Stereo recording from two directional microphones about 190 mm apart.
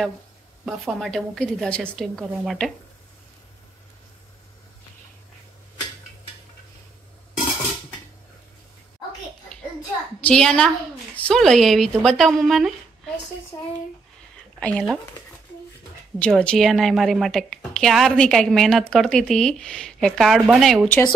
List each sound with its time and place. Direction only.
0.7 s a woman's voice: centre (ahead or behind)
10.2 s a woman's voice: 5° left (ahead or behind)
13.5 s speech: 20° left (ahead or behind)
14.6 s a woman's voice: 5° left (ahead or behind)
16.2 s a woman's voice: 5° left (ahead or behind)